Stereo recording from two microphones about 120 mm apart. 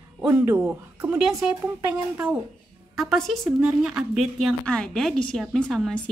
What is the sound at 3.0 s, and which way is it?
A woman's voice, centre (ahead or behind).